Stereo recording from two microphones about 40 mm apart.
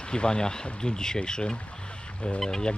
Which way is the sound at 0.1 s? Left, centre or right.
Left.